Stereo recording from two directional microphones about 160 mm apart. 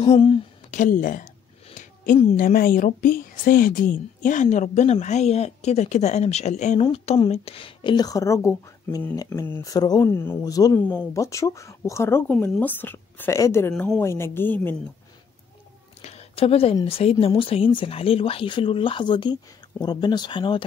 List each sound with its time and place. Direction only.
0.0 s speech: 35° left (ahead or behind)
0.7 s a woman's voice: 50° left (ahead or behind)
2.3 s a woman's voice: 60° left (ahead or behind); by 14.8 s 10° left (ahead or behind)
16.0 s a sound: 40° left (ahead or behind)
16.8 s a woman's voice: 40° left (ahead or behind)